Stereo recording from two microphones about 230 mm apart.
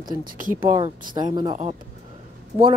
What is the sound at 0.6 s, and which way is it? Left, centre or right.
Speech, right.